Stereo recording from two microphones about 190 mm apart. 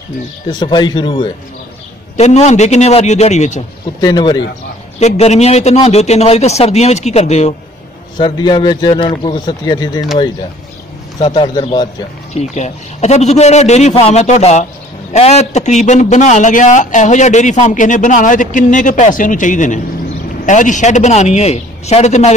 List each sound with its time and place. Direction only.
0.5 s a man's voice: 25° left (ahead or behind)
2.1 s a man's voice: 35° left (ahead or behind)
4.0 s a man's voice: 20° left (ahead or behind)
5.0 s a man's voice: 35° left (ahead or behind)
8.2 s a man's voice: 25° left (ahead or behind)
11.1 s a man's voice: 25° left (ahead or behind)
12.4 s a man's voice: 35° left (ahead or behind)